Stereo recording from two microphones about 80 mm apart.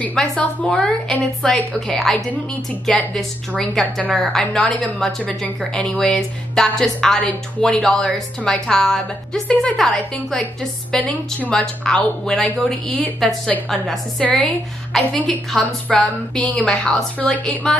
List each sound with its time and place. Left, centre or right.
0.4 s a woman's voice: centre
0.7 s a woman's voice: centre
7.2 s speech: centre
7.8 s a woman's voice: centre
14.2 s a woman's voice: centre
15.2 s a woman's voice: centre